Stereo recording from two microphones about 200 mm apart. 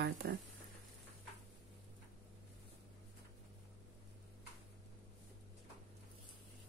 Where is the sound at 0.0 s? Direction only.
55° right (ahead or behind).